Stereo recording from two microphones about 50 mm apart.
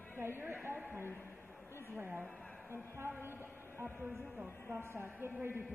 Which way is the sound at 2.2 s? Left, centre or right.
Left.